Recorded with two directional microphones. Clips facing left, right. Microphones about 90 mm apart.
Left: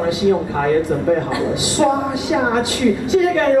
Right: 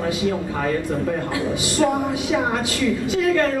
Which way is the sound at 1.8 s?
15° left (ahead or behind).